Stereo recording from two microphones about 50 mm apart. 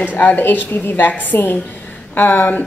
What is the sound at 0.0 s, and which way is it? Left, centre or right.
A woman's voice, left.